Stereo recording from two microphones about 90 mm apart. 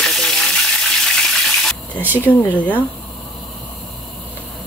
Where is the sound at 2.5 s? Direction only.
20° left (ahead or behind).